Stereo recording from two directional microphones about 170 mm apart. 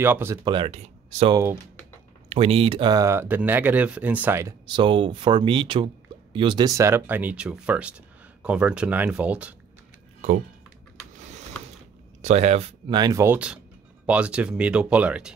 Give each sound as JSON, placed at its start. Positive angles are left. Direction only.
{"t": 0.0, "sound": "speech", "side_deg": -15}
{"t": 4.6, "sound": "speech", "side_deg": -30}
{"t": 12.2, "sound": "speech", "side_deg": -40}